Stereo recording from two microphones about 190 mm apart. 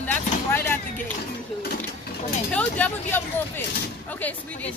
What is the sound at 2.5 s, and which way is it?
Speech, 5° left (ahead or behind).